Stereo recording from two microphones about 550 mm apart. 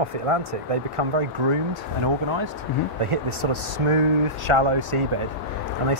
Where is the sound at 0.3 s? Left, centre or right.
Right.